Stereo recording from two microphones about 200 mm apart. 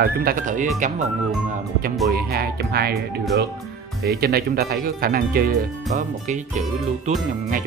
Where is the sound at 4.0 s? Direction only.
50° right (ahead or behind).